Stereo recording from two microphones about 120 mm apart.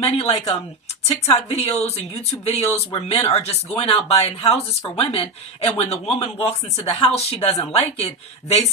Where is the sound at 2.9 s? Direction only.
55° left (ahead or behind).